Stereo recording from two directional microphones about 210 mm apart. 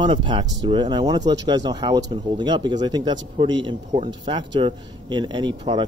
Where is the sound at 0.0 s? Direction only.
25° right (ahead or behind).